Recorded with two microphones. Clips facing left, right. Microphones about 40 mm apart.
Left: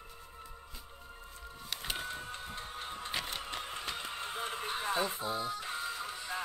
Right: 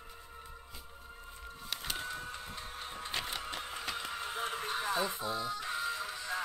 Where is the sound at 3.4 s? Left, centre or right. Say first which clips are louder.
Even; centre.